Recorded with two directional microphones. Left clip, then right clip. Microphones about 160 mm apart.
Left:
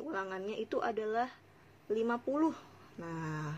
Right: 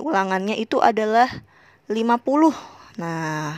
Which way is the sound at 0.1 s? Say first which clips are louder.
Right 18 dB; 90° right.